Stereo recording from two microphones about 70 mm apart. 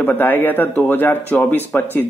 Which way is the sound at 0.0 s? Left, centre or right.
Left.